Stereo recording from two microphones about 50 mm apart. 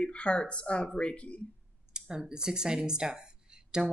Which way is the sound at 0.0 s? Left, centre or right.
Left.